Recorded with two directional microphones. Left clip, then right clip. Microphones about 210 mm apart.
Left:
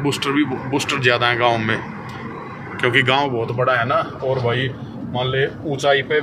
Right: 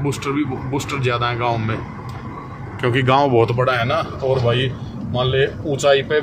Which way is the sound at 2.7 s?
25° right (ahead or behind).